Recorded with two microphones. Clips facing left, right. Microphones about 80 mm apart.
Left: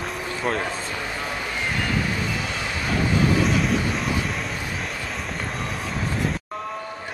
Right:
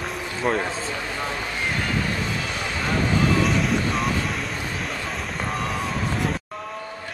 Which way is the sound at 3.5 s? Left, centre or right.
Centre.